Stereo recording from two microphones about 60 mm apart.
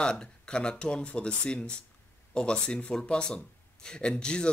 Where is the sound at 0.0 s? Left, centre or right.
Centre.